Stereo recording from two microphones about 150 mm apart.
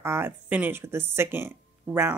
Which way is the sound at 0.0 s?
15° right (ahead or behind).